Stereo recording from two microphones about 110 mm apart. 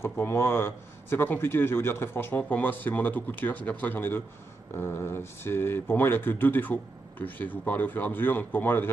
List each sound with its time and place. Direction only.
0.0 s a man's voice: 20° left (ahead or behind)